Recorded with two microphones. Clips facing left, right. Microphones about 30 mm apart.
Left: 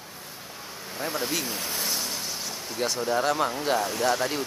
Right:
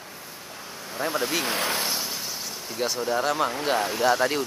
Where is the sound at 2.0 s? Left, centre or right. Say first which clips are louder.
Even; centre.